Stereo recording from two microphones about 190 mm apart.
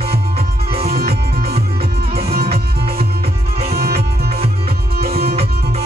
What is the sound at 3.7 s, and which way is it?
Music, 55° right (ahead or behind).